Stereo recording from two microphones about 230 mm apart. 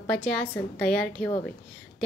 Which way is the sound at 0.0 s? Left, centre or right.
Centre.